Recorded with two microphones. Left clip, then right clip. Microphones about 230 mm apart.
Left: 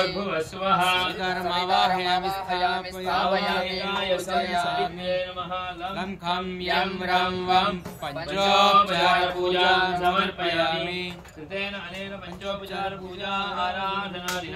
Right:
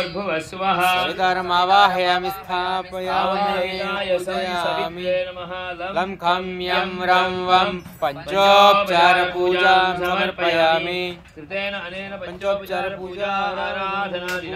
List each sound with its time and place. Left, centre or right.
0.3 s speech: right
4.5 s speech: right
12.4 s speech: right